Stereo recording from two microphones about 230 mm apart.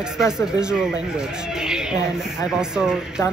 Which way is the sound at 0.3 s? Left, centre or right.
Centre.